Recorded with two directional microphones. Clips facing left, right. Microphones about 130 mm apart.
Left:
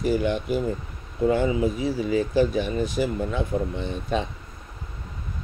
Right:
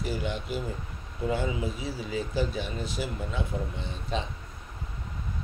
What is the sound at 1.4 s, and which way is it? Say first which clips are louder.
Speech: left 8 dB; 55° left (ahead or behind).